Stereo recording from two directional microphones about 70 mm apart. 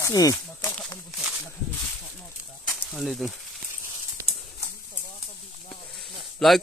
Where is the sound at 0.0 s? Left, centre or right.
Left.